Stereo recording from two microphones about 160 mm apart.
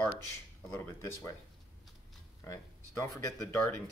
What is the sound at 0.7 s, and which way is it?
Speech, 15° left (ahead or behind).